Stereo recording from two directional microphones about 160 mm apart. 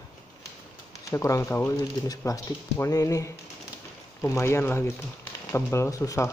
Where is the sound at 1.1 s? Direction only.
20° left (ahead or behind).